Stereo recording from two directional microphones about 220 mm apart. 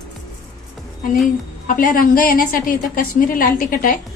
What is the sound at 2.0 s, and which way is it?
A woman's voice, 40° left (ahead or behind).